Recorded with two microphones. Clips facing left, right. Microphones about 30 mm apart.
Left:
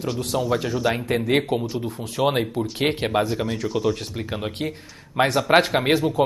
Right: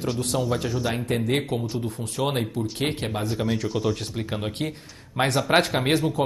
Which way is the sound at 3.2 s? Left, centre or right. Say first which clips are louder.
Left 1 dB; centre.